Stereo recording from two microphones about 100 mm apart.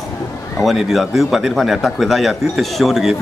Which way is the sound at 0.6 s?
Centre (ahead or behind).